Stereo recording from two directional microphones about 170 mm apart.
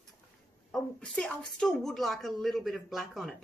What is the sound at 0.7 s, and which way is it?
Speech, 5° left (ahead or behind).